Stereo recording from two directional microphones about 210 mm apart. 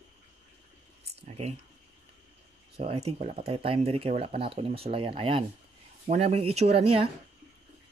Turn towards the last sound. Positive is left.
turn(degrees=-30)  # may be behind; listen again after turning